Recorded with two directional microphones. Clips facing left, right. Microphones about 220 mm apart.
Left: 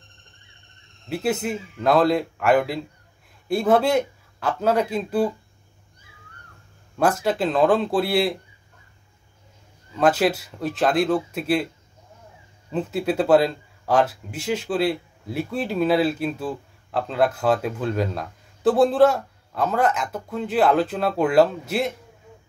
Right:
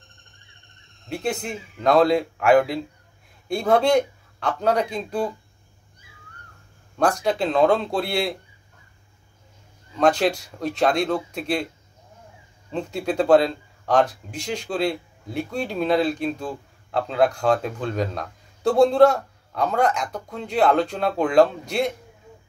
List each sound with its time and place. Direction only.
1.0 s speech: 5° left (ahead or behind)
7.0 s speech: 5° left (ahead or behind)
9.9 s speech: 5° left (ahead or behind)
12.7 s speech: 5° left (ahead or behind)